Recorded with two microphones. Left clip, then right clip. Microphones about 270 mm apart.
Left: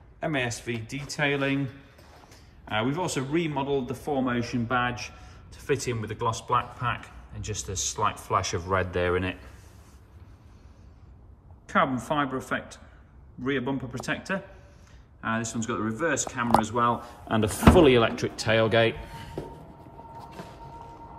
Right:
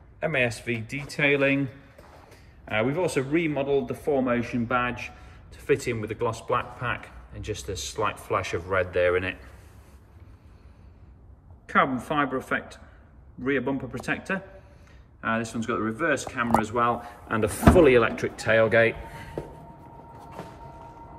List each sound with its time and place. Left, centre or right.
0.2 s speech: centre
2.7 s speech: centre
11.7 s a man's voice: centre
18.1 s speech: left
18.5 s speech: centre